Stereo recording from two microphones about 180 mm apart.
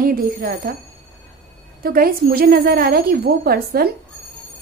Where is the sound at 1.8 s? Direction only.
55° right (ahead or behind).